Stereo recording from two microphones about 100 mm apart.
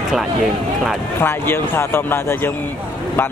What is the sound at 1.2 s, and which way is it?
Speech, 25° left (ahead or behind).